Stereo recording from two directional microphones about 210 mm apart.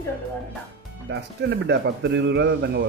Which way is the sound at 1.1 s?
55° right (ahead or behind).